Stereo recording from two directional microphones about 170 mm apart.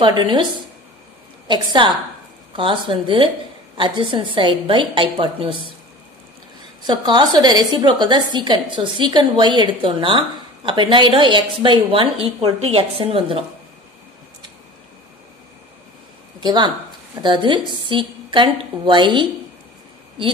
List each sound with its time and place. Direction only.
0.0 s a woman's voice: 25° right (ahead or behind)
1.5 s a woman's voice: 25° right (ahead or behind)
6.8 s a woman's voice: 25° right (ahead or behind)
16.3 s a woman's voice: 25° right (ahead or behind)